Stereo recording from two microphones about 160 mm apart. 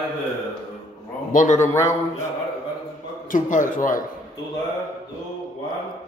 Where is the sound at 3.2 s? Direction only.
55° left (ahead or behind).